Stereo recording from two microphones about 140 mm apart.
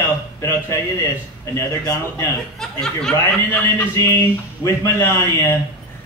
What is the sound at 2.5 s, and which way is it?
Speech, 5° left (ahead or behind).